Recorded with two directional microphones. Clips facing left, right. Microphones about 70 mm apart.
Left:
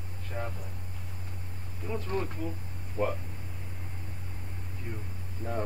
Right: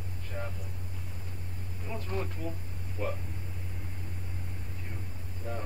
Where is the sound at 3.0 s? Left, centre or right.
Left.